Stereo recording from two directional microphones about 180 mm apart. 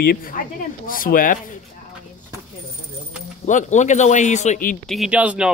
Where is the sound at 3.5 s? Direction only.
45° left (ahead or behind).